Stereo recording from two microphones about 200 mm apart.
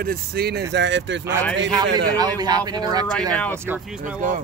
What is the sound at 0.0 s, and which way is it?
Speech, 50° right (ahead or behind).